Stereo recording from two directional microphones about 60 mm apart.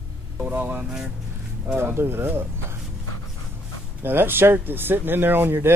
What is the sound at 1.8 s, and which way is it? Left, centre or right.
Speech, right.